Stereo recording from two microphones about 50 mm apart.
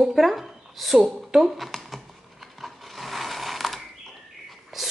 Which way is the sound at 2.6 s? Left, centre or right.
Centre.